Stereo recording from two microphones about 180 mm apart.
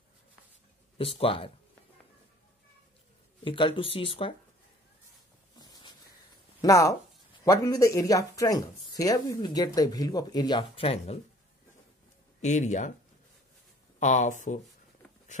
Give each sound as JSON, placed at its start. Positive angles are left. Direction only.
{"t": 0.9, "sound": "speech", "side_deg": 30}
{"t": 3.4, "sound": "speech", "side_deg": 30}
{"t": 5.6, "sound": "a sound", "side_deg": 20}
{"t": 6.6, "sound": "speech", "side_deg": 15}
{"t": 12.4, "sound": "speech", "side_deg": 40}
{"t": 13.9, "sound": "speech", "side_deg": 45}